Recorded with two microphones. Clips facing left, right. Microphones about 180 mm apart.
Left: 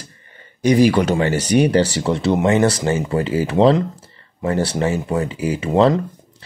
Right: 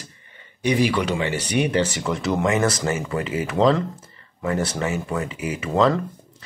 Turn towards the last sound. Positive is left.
turn(degrees=30)  # may be behind; listen again after turning